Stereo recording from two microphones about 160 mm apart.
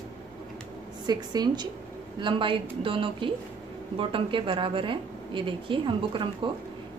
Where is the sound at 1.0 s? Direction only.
25° right (ahead or behind).